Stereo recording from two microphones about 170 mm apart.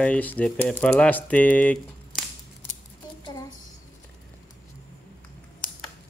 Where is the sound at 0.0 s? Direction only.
10° left (ahead or behind).